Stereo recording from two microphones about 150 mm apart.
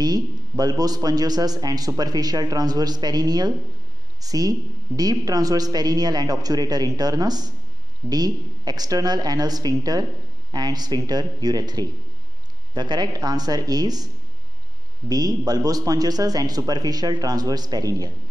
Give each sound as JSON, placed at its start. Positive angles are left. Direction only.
{"t": 0.0, "sound": "a man's voice", "side_deg": -25}